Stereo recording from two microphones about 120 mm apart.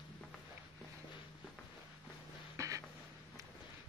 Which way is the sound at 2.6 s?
25° right (ahead or behind).